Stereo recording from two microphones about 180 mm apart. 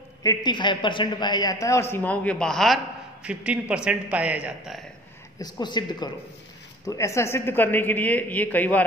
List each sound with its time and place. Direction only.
0.2 s a man's voice: 20° left (ahead or behind); by 4.8 s 5° right (ahead or behind)
5.4 s a man's voice: 25° left (ahead or behind)